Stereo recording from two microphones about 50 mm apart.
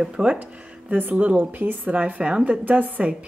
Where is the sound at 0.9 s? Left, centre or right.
Right.